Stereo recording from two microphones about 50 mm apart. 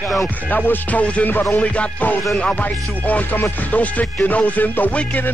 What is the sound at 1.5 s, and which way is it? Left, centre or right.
Music, left.